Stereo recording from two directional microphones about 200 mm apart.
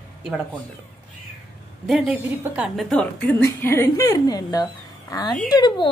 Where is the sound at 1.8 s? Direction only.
5° right (ahead or behind).